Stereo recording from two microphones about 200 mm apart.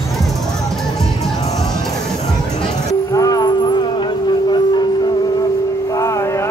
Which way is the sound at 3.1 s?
20° left (ahead or behind).